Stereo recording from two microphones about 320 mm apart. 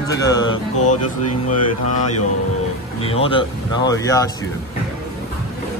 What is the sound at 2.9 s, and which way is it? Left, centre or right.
Speech, centre.